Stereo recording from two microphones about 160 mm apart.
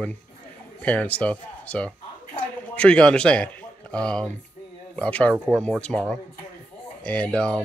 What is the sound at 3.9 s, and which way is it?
Speech, 5° left (ahead or behind).